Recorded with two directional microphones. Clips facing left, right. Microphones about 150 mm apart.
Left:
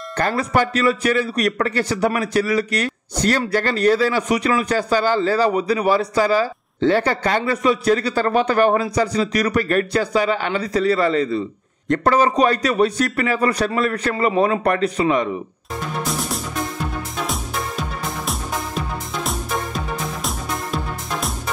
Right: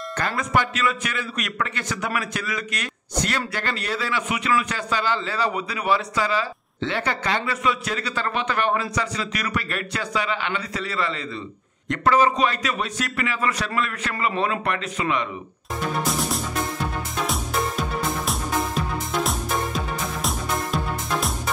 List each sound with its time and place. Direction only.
0.2 s a man's voice: 40° left (ahead or behind)
16.0 s music: centre (ahead or behind)